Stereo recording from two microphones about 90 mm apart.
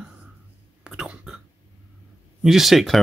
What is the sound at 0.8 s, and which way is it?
Whispering, 10° right (ahead or behind).